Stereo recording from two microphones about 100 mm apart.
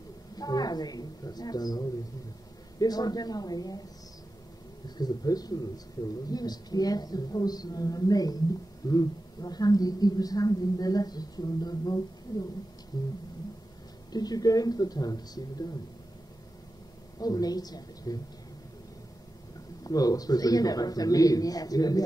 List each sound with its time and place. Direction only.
0.4 s a woman's voice: 40° left (ahead or behind)
4.8 s a woman's voice: 40° left (ahead or behind)
14.1 s a woman's voice: 40° left (ahead or behind)
17.2 s a woman's voice: 40° left (ahead or behind)
19.8 s a woman's voice: 40° left (ahead or behind)